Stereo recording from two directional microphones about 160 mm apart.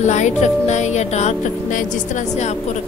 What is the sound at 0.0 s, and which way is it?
Music, 45° left (ahead or behind).